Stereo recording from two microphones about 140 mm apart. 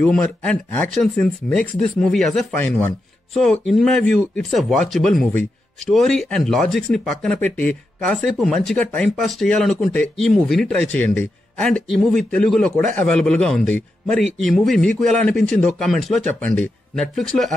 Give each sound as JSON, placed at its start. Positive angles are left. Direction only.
{"t": 0.0, "sound": "speech", "side_deg": 10}